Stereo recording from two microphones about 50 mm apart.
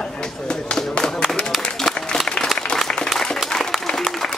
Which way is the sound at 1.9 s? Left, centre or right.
Centre.